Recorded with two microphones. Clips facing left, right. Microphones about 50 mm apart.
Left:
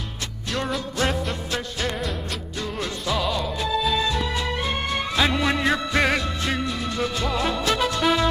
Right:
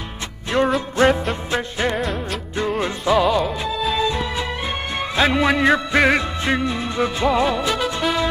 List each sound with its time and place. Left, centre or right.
0.5 s music: right
5.1 s music: right